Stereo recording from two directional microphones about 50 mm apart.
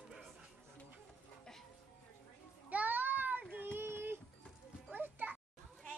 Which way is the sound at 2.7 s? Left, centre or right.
Right.